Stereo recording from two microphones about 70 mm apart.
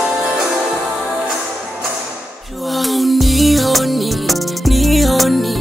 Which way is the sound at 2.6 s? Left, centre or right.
Centre.